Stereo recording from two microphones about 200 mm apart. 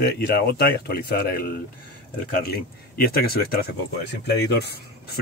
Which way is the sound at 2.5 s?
50° left (ahead or behind).